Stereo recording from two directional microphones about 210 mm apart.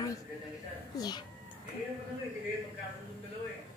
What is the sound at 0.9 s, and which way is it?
Speech, 20° left (ahead or behind).